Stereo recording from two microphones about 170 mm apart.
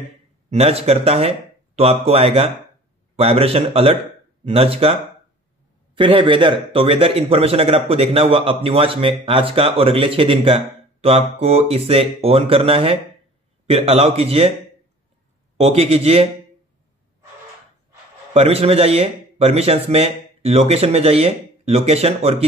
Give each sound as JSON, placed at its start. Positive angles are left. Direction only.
{"t": 0.5, "sound": "a man's voice", "side_deg": -35}
{"t": 5.9, "sound": "a man's voice", "side_deg": -30}
{"t": 15.5, "sound": "a man's voice", "side_deg": -40}
{"t": 18.3, "sound": "a man's voice", "side_deg": -35}